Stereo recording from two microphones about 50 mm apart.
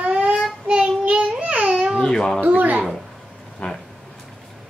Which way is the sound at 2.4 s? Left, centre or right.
Right.